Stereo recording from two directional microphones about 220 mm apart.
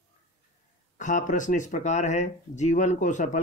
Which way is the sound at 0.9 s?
35° left (ahead or behind).